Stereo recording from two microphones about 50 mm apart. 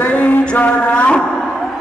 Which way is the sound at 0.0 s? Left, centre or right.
Left.